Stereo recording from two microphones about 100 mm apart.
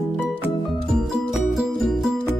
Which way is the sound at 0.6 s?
Centre (ahead or behind).